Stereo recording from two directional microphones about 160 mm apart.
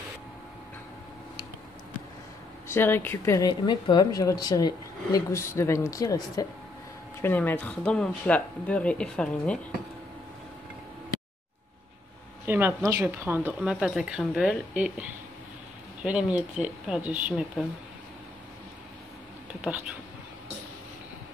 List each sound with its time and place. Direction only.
2.7 s speech: 15° left (ahead or behind)
7.2 s speech: 10° left (ahead or behind)
12.4 s speech: 15° right (ahead or behind)